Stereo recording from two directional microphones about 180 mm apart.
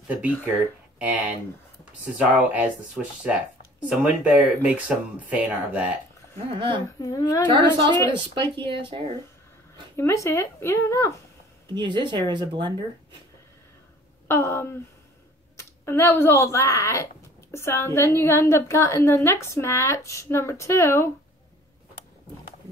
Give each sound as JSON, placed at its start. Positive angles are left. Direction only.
{"t": 0.9, "sound": "speech", "side_deg": -10}
{"t": 6.5, "sound": "speech", "side_deg": -30}
{"t": 7.0, "sound": "a woman's voice", "side_deg": 20}
{"t": 7.4, "sound": "speech", "side_deg": -25}
{"t": 9.9, "sound": "speech", "side_deg": 15}
{"t": 11.7, "sound": "speech", "side_deg": -25}
{"t": 14.2, "sound": "speech", "side_deg": 15}